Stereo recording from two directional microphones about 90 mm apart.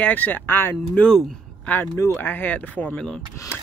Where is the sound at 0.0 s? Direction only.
20° left (ahead or behind).